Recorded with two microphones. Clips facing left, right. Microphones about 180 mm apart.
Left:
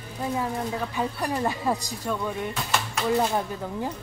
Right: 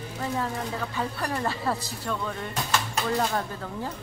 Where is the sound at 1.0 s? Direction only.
15° left (ahead or behind).